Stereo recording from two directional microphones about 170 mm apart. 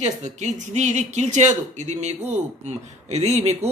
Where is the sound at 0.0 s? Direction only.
45° right (ahead or behind).